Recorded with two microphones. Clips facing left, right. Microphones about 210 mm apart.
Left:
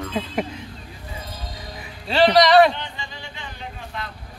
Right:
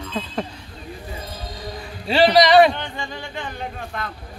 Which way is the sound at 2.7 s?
50° right (ahead or behind).